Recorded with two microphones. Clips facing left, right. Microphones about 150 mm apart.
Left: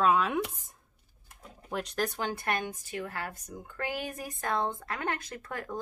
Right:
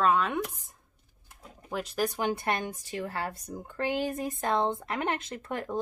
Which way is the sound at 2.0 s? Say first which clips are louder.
Right 4 dB; 15° right (ahead or behind).